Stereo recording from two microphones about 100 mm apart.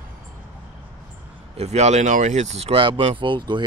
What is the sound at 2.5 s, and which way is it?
Speech, 80° right.